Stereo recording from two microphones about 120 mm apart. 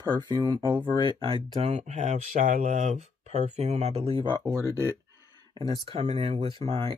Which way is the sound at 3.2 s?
70° right (ahead or behind).